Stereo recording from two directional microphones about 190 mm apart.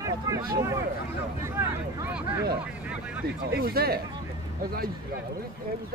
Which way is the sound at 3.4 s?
55° right (ahead or behind).